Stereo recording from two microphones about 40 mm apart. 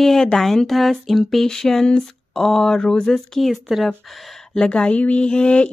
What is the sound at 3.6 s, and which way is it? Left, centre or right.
Speech, centre.